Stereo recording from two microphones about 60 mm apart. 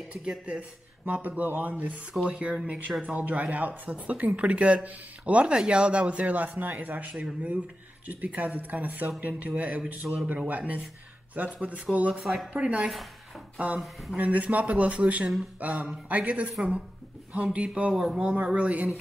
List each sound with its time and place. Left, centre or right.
0.1 s speech: centre
12.1 s speech: centre
12.5 s speech: centre
13.6 s speech: right
17.9 s speech: centre
18.2 s speech: centre